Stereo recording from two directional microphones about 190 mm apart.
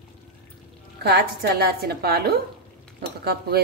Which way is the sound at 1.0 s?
55° right (ahead or behind).